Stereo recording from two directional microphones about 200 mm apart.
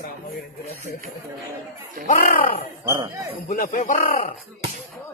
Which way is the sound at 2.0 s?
45° left (ahead or behind).